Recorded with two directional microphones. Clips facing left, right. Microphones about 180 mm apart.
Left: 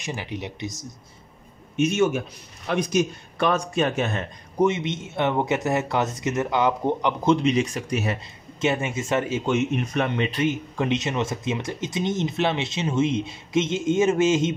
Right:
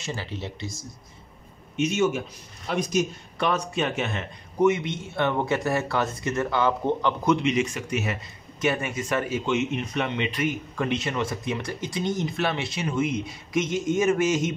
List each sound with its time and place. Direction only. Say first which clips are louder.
0.0 s speech: left 2 dB; 15° left (ahead or behind)
1.8 s speech: left 2 dB; 50° left (ahead or behind)
3.3 s speech: left 3 dB; 50° left (ahead or behind)
4.6 s speech: right 5 dB; 25° left (ahead or behind)
7.2 s speech: left 3 dB; 35° left (ahead or behind)
9.5 s speech: left 3 dB; 50° left (ahead or behind)
10.3 s speech: left 3 dB; 25° left (ahead or behind)